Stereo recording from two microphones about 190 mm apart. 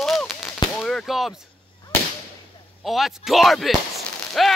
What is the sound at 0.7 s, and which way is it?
Whip, centre (ahead or behind).